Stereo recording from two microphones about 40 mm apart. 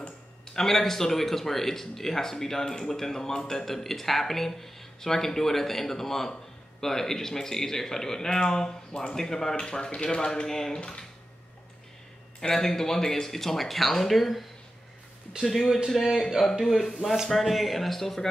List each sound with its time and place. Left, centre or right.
0.6 s speech: centre
12.4 s speech: centre
15.4 s speech: centre